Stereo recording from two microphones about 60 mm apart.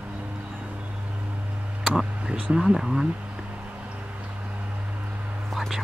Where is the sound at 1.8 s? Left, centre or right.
Centre.